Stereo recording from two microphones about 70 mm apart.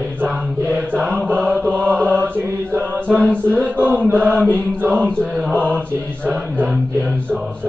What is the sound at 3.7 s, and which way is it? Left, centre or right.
Mantra, right.